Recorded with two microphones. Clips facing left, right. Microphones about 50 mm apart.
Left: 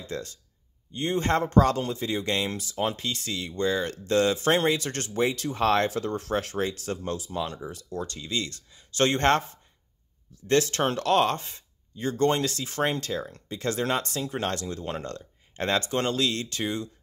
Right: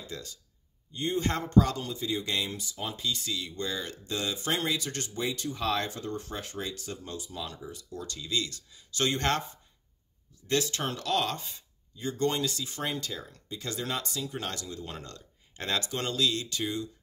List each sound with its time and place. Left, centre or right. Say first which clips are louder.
0.0 s speech: left 7 dB; left
3.9 s speech: left 10 dB; left
5.6 s speech: left 8 dB; left
5.9 s speech: left 8 dB; left
7.3 s speech: left 7 dB; left
8.0 s speech: left 2 dB; left
10.4 s speech: left 6 dB; left
12.0 s speech: left 5 dB; left
12.3 s speech: left 5 dB; left
12.8 s speech: left 7 dB; left
13.1 s speech: left 8 dB; left
13.5 s speech: left 7 dB; left
14.9 s speech: left 9 dB; left